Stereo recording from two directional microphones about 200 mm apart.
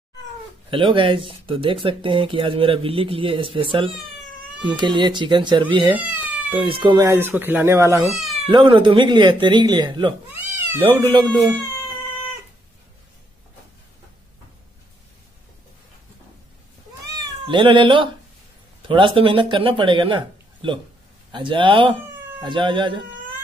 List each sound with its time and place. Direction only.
0.7 s speech: 25° right (ahead or behind)
5.9 s cat: 5° right (ahead or behind)
6.5 s speech: 25° right (ahead or behind)
8.1 s speech: centre (ahead or behind)
8.5 s speech: 25° right (ahead or behind)
17.5 s speech: 25° right (ahead or behind)